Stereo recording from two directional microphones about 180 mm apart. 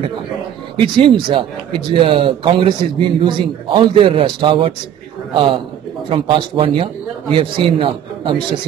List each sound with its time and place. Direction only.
0.7 s speech: 25° right (ahead or behind)